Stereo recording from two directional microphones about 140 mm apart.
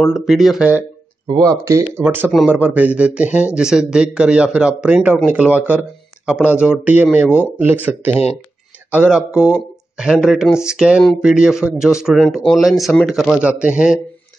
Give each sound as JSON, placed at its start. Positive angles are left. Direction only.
{"t": 0.0, "sound": "speech", "side_deg": 0}
{"t": 1.6, "sound": "speech", "side_deg": -20}